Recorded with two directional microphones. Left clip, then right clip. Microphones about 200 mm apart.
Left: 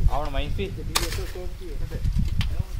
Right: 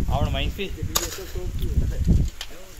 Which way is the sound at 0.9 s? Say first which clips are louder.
Left 1 dB; 20° left (ahead or behind).